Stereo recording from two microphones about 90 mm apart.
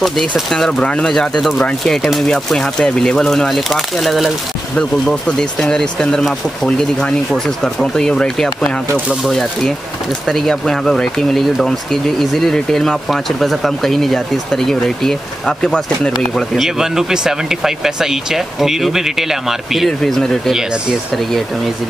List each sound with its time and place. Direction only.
0.0 s speech: centre (ahead or behind)